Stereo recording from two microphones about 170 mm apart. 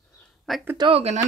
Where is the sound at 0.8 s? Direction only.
35° right (ahead or behind).